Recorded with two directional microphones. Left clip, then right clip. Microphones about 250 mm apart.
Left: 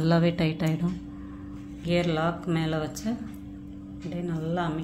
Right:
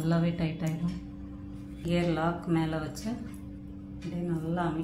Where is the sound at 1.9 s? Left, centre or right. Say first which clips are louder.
Left 3 dB; left.